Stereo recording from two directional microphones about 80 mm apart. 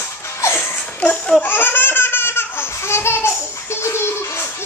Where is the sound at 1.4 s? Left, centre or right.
Left.